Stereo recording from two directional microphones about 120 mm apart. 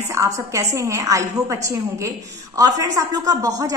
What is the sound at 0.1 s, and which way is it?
A woman's voice, 25° right (ahead or behind).